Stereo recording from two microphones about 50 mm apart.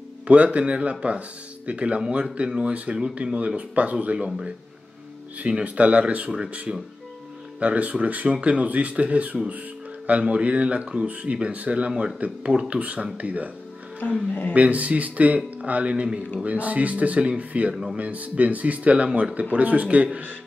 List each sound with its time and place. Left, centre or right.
0.3 s speech: right
5.5 s speech: right
14.5 s speech: right
19.0 s speech: centre
19.5 s speech: right